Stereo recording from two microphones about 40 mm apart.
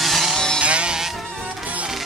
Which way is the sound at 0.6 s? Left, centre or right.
Right.